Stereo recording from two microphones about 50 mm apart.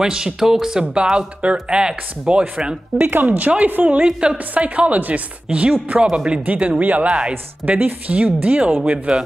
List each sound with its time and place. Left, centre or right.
0.0 s speech: centre
3.0 s speech: right
3.3 s speech: right
4.0 s speech: centre
4.6 s speech: right
8.3 s speech: right
8.8 s speech: right